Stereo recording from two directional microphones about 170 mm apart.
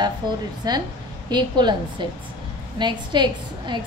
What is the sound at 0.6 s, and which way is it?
A woman's voice, 25° right (ahead or behind).